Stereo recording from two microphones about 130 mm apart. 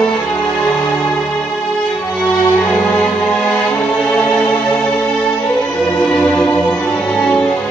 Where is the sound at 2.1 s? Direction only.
10° left (ahead or behind).